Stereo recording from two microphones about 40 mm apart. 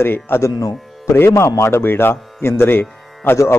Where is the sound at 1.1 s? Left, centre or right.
Left.